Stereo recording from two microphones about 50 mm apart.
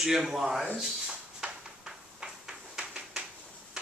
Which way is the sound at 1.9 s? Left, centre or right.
Centre.